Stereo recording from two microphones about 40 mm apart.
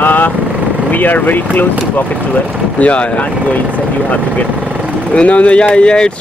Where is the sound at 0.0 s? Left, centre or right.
Left.